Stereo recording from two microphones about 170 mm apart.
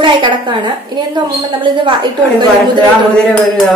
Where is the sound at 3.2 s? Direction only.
5° left (ahead or behind).